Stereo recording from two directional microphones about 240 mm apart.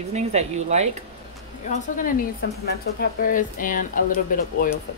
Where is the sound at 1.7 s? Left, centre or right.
Left.